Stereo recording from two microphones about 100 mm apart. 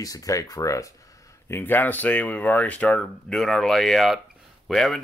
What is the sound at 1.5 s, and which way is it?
Speech, 20° left (ahead or behind).